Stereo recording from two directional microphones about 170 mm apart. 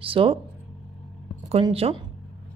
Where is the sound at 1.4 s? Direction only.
35° right (ahead or behind).